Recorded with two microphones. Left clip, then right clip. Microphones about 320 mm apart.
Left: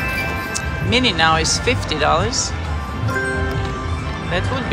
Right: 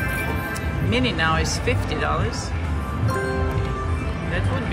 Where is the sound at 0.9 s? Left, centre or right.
Centre.